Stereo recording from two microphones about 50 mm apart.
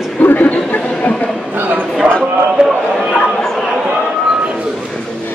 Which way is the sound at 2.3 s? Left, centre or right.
Centre.